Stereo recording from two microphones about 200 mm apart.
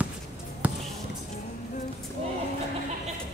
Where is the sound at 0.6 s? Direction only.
5° right (ahead or behind).